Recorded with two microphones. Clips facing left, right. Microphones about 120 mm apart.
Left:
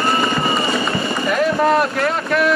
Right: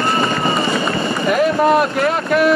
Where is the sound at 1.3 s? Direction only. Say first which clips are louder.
Right 2 dB; 5° right (ahead or behind).